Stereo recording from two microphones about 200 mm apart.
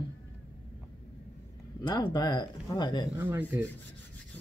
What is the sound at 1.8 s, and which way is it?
Speech, 20° left (ahead or behind).